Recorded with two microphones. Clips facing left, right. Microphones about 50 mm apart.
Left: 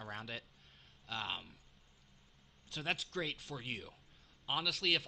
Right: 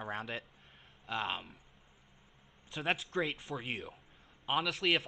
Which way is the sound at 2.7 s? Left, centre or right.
Right.